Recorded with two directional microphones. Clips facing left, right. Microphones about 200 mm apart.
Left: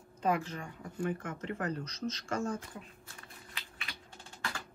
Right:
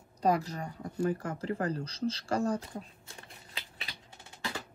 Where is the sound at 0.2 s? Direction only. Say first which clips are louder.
Right 3 dB; 35° right (ahead or behind).